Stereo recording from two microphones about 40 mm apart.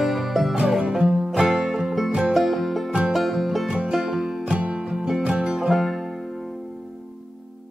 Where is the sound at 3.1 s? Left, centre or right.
Centre.